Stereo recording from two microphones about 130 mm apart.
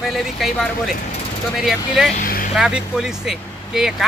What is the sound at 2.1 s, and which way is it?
Speech, 90° left.